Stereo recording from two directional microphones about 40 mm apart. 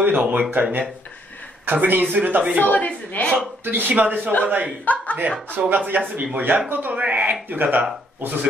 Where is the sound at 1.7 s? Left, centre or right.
Right.